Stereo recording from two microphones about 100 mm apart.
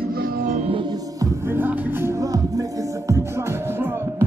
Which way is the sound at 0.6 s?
70° right (ahead or behind).